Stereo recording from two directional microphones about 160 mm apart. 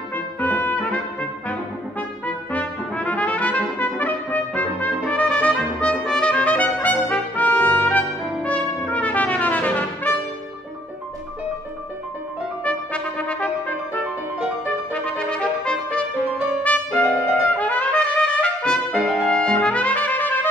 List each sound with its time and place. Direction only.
0.1 s trumpet: 10° left (ahead or behind)
12.6 s brass instrument: 5° left (ahead or behind)
14.9 s trumpet: 5° left (ahead or behind)
16.6 s brass instrument: 10° left (ahead or behind)
17.6 s trumpet: 10° left (ahead or behind)
18.9 s trumpet: 10° right (ahead or behind)
19.3 s trumpet: 5° left (ahead or behind)